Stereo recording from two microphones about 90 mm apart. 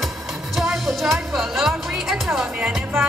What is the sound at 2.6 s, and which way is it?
Music, 20° right (ahead or behind).